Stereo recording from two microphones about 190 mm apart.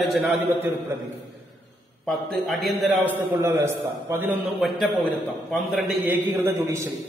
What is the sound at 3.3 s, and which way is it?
A man's voice, 15° right (ahead or behind).